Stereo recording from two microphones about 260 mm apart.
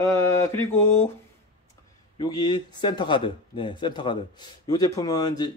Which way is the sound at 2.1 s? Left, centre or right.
Centre.